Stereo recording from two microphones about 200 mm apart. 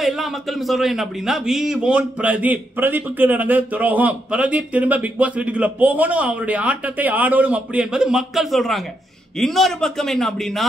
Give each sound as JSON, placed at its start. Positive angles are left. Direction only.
{"t": 0.0, "sound": "a man's voice", "side_deg": 0}